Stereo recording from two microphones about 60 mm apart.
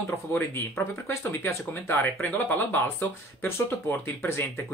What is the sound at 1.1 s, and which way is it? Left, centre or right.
Speech, left.